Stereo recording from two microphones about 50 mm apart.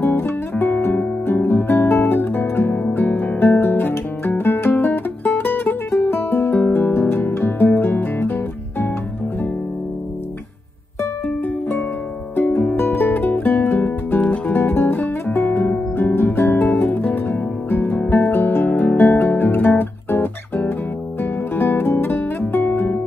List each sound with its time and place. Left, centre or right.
0.0 s guitar: left
6.7 s music: left
12.4 s music: left
14.5 s music: left
14.8 s music: left
18.0 s music: left
18.3 s music: left